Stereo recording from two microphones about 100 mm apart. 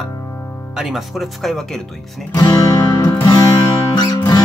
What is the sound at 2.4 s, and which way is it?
Music, 45° left (ahead or behind).